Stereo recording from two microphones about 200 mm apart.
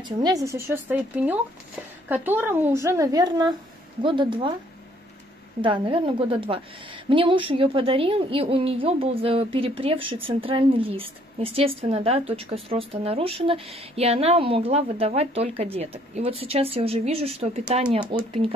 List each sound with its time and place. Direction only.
0.2 s a woman's voice: 15° right (ahead or behind)
5.6 s a woman's voice: 25° right (ahead or behind)